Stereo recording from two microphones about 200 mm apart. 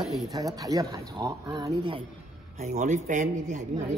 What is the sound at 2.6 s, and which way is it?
A man's voice, 35° right (ahead or behind).